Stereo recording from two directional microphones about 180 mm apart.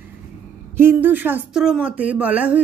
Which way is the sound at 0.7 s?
10° right (ahead or behind).